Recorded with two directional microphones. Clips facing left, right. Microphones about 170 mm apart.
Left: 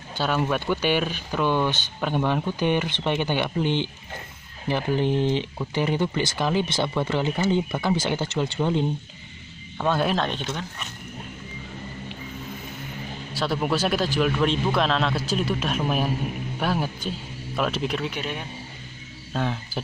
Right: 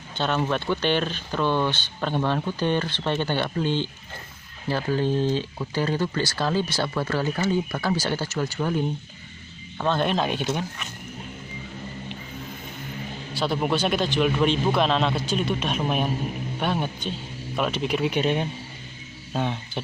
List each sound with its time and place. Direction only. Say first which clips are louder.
0.1 s speech: even; 5° left (ahead or behind)
9.8 s speech: even; 5° left (ahead or behind)
10.1 s speech: right 2 dB; 10° right (ahead or behind)
13.3 s a man's voice: right 1 dB; centre (ahead or behind)
18.0 s speech: right 7 dB; 20° right (ahead or behind)
19.3 s a man's voice: even; centre (ahead or behind)